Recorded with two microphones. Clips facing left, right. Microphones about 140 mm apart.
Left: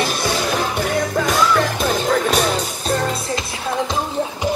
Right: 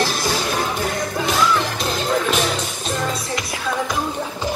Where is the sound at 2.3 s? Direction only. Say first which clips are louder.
Left 2 dB; 35° left (ahead or behind).